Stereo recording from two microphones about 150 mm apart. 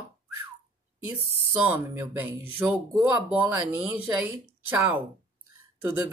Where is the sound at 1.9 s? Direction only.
15° right (ahead or behind).